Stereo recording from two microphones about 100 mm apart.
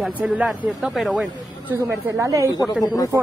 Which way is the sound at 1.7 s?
25° right (ahead or behind).